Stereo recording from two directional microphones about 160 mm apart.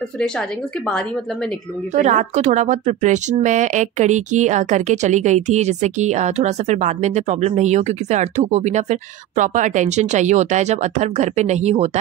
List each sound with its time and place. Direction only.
2.0 s speech: 50° right (ahead or behind)